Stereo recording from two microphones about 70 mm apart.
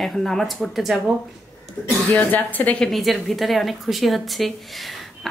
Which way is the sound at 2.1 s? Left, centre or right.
Left.